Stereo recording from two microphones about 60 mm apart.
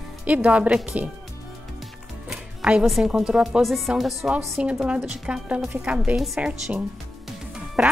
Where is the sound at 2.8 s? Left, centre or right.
Centre.